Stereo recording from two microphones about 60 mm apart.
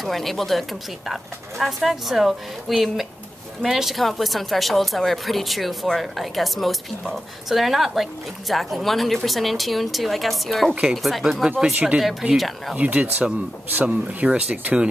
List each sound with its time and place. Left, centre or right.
0.0 s speech: centre
12.7 s speech: right